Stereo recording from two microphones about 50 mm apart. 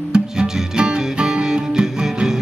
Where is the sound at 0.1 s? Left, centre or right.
Centre.